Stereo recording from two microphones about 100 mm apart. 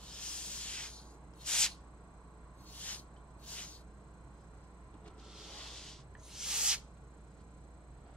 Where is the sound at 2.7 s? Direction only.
15° left (ahead or behind).